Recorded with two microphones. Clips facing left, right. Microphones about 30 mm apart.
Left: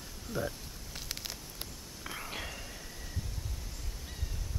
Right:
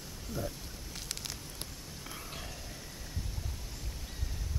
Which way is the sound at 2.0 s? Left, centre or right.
Left.